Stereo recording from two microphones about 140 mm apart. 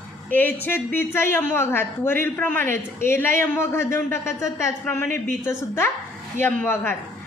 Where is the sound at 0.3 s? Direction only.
15° left (ahead or behind).